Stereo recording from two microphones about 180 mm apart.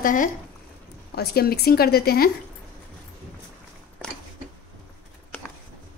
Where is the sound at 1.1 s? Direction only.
60° left (ahead or behind).